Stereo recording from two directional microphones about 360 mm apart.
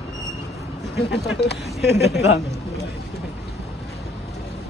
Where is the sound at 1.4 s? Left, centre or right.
Centre.